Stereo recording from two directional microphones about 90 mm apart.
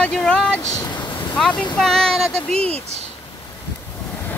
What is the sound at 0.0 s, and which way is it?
Vehicle, 10° left (ahead or behind).